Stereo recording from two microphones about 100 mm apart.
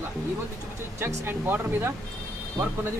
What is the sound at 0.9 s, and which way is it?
Speech, 25° right (ahead or behind).